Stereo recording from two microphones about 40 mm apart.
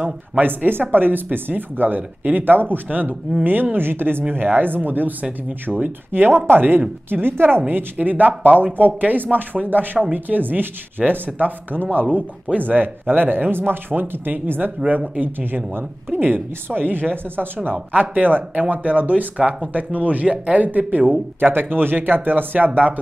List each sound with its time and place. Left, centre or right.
0.4 s speech: right
3.7 s speech: right
4.3 s speech: right
6.3 s speech: right
12.6 s speech: right